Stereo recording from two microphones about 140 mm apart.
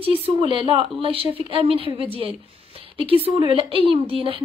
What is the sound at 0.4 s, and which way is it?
A woman's voice, 40° right (ahead or behind).